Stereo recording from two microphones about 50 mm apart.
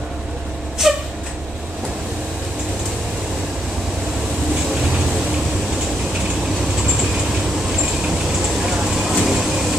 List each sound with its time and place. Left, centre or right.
0.8 s a sound: centre
8.6 s vehicle: centre
9.1 s train: centre